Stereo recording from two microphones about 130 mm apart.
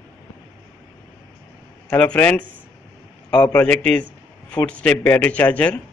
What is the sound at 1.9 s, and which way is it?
Speech, 10° left (ahead or behind).